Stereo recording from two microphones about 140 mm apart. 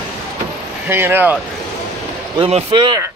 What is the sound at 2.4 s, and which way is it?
Speech, 40° right (ahead or behind).